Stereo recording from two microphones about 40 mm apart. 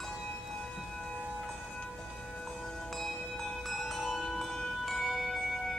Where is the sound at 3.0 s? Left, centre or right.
Centre.